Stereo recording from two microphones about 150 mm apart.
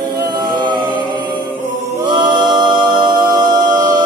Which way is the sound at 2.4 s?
30° right (ahead or behind).